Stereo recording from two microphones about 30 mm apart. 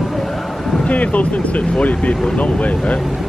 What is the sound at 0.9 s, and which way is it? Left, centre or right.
Speech, left.